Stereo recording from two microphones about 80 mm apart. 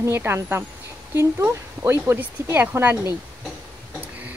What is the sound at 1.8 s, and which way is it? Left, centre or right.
Speech, right.